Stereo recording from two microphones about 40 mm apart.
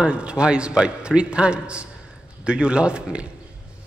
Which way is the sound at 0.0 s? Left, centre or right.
Right.